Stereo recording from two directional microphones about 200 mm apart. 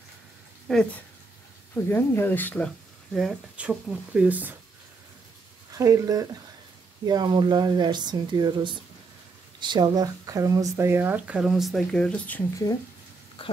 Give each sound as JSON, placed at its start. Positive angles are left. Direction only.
{"t": 0.7, "sound": "speech", "side_deg": 0}
{"t": 1.9, "sound": "speech", "side_deg": 10}
{"t": 3.2, "sound": "speech", "side_deg": -5}
{"t": 5.7, "sound": "speech", "side_deg": -15}
{"t": 13.4, "sound": "a sound", "side_deg": 25}